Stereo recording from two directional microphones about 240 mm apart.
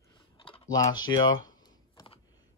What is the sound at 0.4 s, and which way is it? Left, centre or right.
Typing, centre.